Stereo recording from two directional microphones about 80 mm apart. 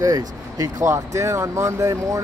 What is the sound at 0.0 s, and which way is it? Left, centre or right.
Speech, right.